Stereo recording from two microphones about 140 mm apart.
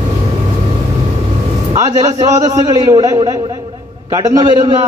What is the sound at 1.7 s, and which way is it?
A man's voice, 25° right (ahead or behind).